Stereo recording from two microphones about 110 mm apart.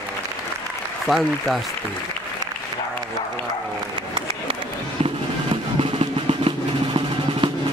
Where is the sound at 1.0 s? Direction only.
Centre (ahead or behind).